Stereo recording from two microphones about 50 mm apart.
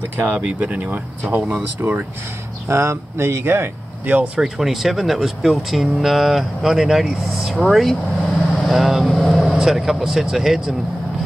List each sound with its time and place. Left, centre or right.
0.6 s speech: right
2.7 s speech: right
4.0 s speech: right
4.4 s speech: centre